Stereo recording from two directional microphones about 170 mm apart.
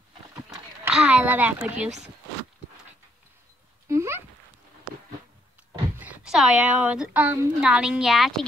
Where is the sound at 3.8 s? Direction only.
15° right (ahead or behind).